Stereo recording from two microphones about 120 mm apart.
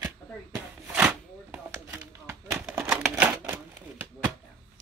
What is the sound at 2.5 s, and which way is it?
Typewriter, 10° right (ahead or behind).